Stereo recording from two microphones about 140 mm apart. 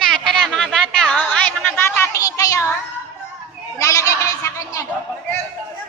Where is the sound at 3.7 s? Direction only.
20° left (ahead or behind).